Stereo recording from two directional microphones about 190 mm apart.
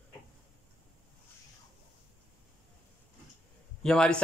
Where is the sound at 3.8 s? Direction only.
5° left (ahead or behind).